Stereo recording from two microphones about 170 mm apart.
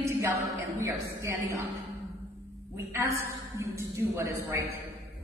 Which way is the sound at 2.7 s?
15° right (ahead or behind).